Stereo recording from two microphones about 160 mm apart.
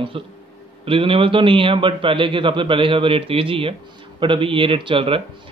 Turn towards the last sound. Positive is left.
turn(degrees=-30)  # may be behind; listen again after turning